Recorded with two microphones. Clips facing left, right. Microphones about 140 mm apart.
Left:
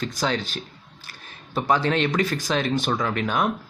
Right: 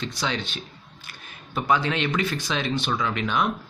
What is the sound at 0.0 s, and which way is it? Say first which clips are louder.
Speech: left 3 dB; 45° left (ahead or behind).